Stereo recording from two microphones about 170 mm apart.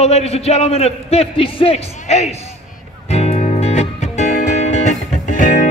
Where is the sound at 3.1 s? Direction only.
40° left (ahead or behind).